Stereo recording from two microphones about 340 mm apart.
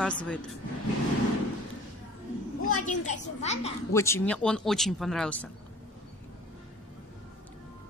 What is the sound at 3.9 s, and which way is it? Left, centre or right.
Speech, centre.